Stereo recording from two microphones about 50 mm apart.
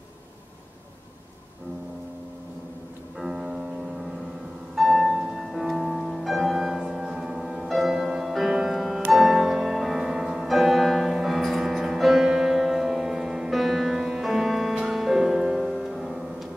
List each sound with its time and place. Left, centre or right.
3.2 s music: centre
4.7 s music: centre